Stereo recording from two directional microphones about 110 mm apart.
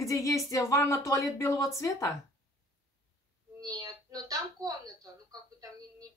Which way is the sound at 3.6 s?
35° right (ahead or behind).